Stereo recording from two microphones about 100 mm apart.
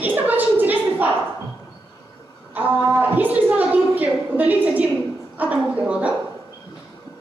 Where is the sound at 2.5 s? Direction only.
20° right (ahead or behind).